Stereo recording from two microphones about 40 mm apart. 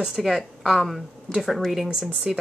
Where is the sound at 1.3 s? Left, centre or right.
Centre.